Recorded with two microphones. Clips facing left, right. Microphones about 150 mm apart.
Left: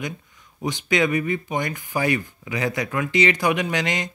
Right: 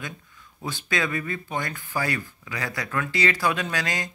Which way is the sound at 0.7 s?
20° left (ahead or behind).